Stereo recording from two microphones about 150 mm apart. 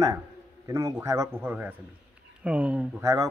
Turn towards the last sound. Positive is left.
turn(degrees=-10)  # may be behind; listen again after turning